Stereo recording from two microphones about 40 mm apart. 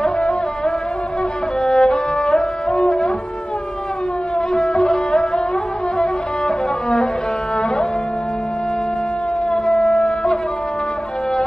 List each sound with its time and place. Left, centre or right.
0.0 s music: left
4.7 s music: centre